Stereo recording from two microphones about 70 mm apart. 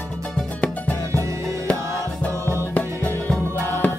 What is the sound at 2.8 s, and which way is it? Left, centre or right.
Music, left.